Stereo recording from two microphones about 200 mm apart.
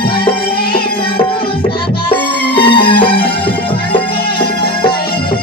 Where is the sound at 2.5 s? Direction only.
25° left (ahead or behind).